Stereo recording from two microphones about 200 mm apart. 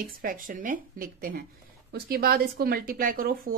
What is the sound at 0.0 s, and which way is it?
Speech, 45° right (ahead or behind).